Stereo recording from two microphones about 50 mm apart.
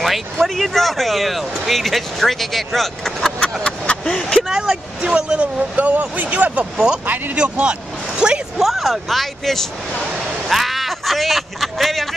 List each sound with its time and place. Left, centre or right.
0.0 s speech: centre
3.3 s a sound: centre
4.0 s speech: centre
4.4 s speech: centre
5.6 s speech: right
8.5 s speech: centre
10.1 s a sound: centre